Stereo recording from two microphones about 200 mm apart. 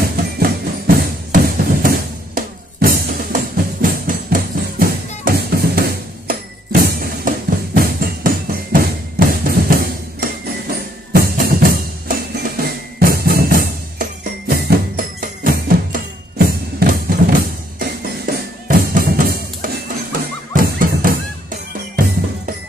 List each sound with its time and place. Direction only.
0.4 s music: 45° right (ahead or behind)
9.3 s drum: 45° right (ahead or behind)